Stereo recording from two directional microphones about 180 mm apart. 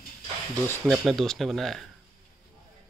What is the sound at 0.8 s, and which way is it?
A man's voice, centre (ahead or behind).